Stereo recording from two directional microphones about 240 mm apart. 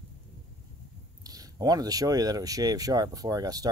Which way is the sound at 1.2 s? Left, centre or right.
Centre.